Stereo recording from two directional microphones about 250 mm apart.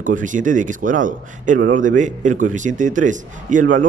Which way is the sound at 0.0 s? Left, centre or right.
Right.